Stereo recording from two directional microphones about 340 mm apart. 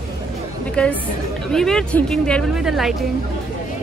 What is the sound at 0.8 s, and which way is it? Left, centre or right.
A woman's voice, centre.